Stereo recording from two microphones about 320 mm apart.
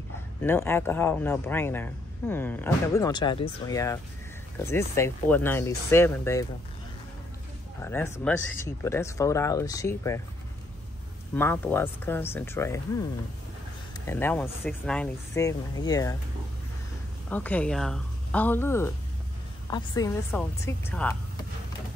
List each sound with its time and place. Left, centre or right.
0.4 s speech: centre
7.8 s speech: centre
11.3 s speech: centre
14.0 s speech: centre
17.3 s a woman's voice: centre